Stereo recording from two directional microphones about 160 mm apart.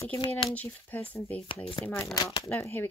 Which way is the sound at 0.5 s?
10° left (ahead or behind).